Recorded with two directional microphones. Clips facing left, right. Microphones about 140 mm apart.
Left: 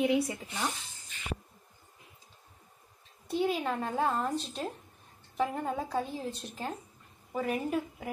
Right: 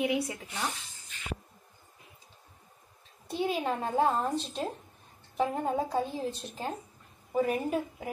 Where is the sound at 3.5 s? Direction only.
20° right (ahead or behind).